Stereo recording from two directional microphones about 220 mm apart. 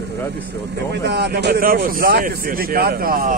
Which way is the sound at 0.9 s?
50° right (ahead or behind).